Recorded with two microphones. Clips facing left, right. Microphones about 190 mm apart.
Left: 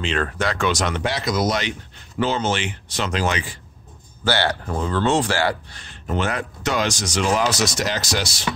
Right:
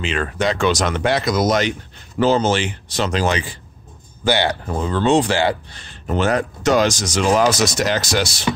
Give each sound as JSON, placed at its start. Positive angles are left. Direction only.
{"t": 0.0, "sound": "speech", "side_deg": -5}
{"t": 0.4, "sound": "speech", "side_deg": -20}
{"t": 0.7, "sound": "speech", "side_deg": -40}
{"t": 4.2, "sound": "speech", "side_deg": -15}
{"t": 6.0, "sound": "speech", "side_deg": -40}
{"t": 8.5, "sound": "speech", "side_deg": -25}